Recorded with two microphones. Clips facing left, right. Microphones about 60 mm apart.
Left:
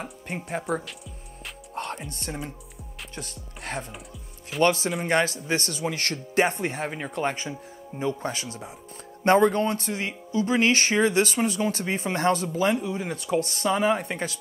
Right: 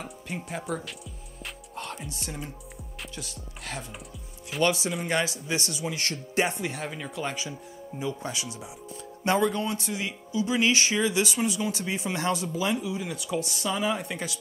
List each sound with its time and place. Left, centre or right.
0.8 s music: centre
1.8 s music: left
3.2 s music: left
4.6 s speech: left